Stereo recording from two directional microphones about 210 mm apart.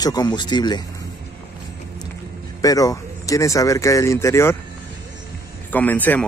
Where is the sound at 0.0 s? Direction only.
20° left (ahead or behind).